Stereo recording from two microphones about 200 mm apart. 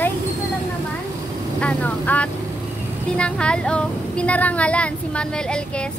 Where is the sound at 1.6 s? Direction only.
10° left (ahead or behind).